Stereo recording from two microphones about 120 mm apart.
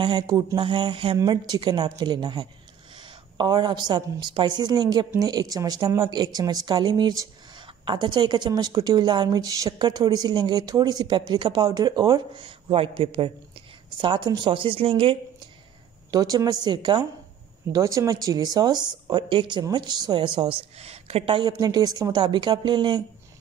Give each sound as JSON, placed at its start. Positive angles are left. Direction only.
{"t": 0.0, "sound": "a woman's voice", "side_deg": -35}
{"t": 16.1, "sound": "speech", "side_deg": -30}
{"t": 17.7, "sound": "speech", "side_deg": -30}
{"t": 20.8, "sound": "speech", "side_deg": -55}